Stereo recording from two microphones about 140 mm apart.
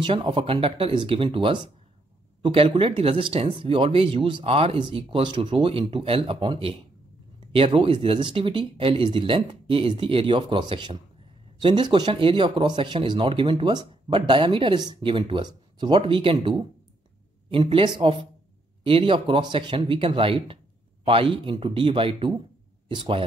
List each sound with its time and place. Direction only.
0.0 s speech: 35° right (ahead or behind)